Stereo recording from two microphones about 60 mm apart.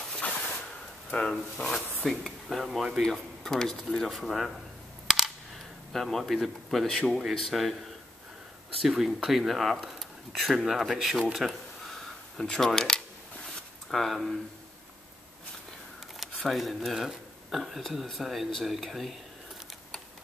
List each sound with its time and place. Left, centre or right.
0.2 s a sound: left
1.1 s speech: centre
3.0 s speech: centre
5.0 s a sound: centre
5.9 s speech: centre
8.7 s speech: centre
11.3 s a sound: centre
12.4 s speech: centre
16.4 s speech: centre